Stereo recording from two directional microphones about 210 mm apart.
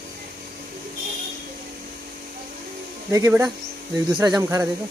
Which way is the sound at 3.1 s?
10° right (ahead or behind).